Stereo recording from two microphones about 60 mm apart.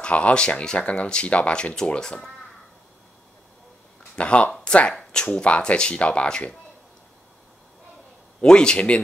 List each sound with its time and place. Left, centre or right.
0.0 s speech: centre
4.2 s speech: centre
8.4 s speech: centre